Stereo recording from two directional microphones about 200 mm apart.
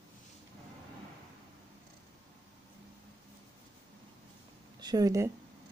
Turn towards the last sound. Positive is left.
turn(degrees=-15)  # may be behind; listen again after turning